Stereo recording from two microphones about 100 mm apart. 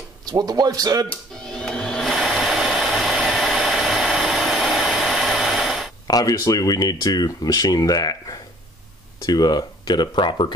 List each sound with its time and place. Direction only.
0.2 s speech: 40° right (ahead or behind)
1.4 s sewing machine: 5° left (ahead or behind)
6.0 s speech: 40° left (ahead or behind)